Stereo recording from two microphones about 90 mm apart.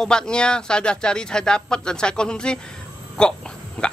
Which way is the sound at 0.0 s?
10° left (ahead or behind).